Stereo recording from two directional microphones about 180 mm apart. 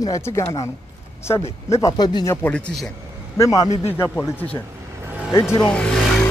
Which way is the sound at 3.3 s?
20° left (ahead or behind).